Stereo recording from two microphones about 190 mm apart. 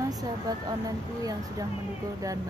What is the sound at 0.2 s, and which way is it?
Speech, 20° right (ahead or behind).